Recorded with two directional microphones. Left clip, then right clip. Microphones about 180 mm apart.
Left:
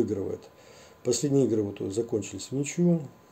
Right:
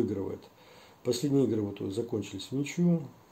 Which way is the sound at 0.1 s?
15° left (ahead or behind).